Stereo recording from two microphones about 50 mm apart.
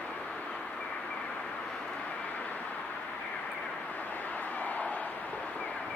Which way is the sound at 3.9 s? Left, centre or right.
Left.